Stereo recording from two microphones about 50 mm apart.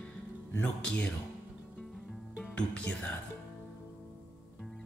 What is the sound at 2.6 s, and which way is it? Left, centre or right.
Speech, left.